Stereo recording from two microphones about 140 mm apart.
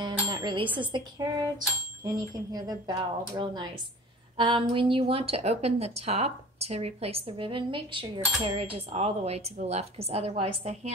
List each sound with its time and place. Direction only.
0.0 s bicycle bell: 30° right (ahead or behind)
0.7 s a woman's voice: 30° right (ahead or behind); by 10.9 s 50° right (ahead or behind)